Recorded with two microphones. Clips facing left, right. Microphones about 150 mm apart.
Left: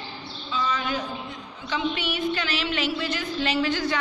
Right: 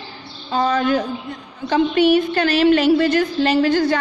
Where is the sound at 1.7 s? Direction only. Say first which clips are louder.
Right 13 dB; 45° right (ahead or behind).